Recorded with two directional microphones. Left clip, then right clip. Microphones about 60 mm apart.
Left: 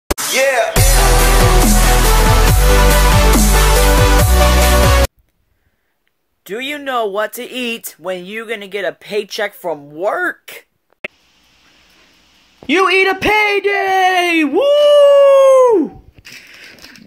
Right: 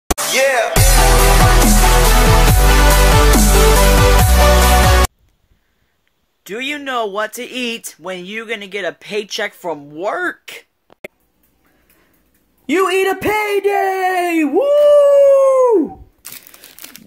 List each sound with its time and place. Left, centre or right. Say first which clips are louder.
0.1 s music: even; centre
6.4 s speech: left 1 dB; left
8.7 s speech: left 3 dB; left
12.6 s a man's voice: left 3 dB; right
14.9 s howl: left 2 dB; centre